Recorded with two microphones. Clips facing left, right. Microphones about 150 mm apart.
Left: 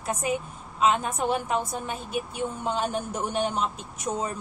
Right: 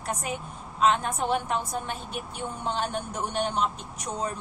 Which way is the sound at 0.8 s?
5° left (ahead or behind).